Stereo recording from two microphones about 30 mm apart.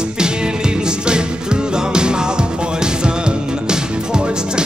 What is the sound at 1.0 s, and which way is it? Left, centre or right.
Music, right.